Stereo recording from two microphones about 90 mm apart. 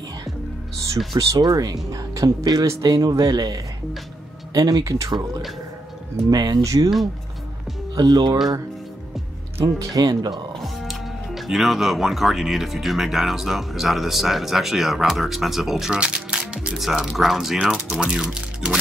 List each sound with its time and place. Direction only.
1.1 s speech: 45° right (ahead or behind)
2.6 s speech: 35° right (ahead or behind)
2.9 s speech: 45° right (ahead or behind)
6.3 s speech: 45° right (ahead or behind)
7.9 s speech: 50° right (ahead or behind)
9.6 s speech: 40° right (ahead or behind)
10.3 s speech: centre (ahead or behind)